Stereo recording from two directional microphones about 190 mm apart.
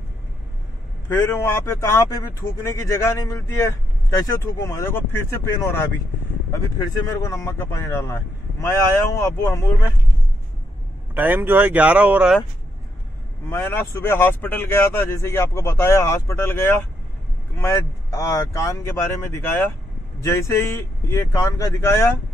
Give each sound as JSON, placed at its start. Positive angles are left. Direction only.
{"t": 1.0, "sound": "speech", "side_deg": 10}
{"t": 11.1, "sound": "speech", "side_deg": -10}
{"t": 13.5, "sound": "speech", "side_deg": 10}